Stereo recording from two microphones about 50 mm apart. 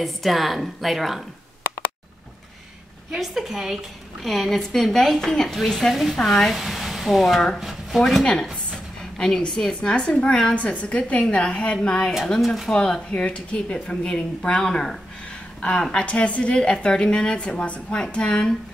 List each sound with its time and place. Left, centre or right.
0.0 s a woman's voice: centre
3.1 s a woman's voice: centre
4.2 s a woman's voice: centre
6.5 s speech: centre
7.5 s a sound: centre
8.0 s speech: centre
10.5 s a woman's voice: left
12.4 s a woman's voice: centre
12.6 s a woman's voice: centre